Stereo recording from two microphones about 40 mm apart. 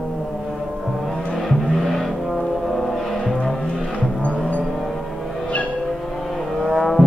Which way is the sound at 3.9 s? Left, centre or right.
Left.